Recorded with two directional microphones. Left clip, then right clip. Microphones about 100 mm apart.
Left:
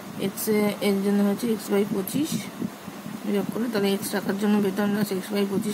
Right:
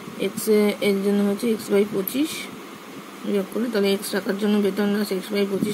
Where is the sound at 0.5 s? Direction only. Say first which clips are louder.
Right 4 dB; 15° right (ahead or behind).